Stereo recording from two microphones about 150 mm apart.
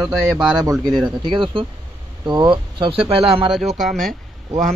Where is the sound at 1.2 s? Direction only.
30° right (ahead or behind).